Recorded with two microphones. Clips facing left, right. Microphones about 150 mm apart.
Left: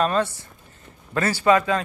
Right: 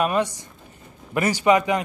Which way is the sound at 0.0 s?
15° right (ahead or behind).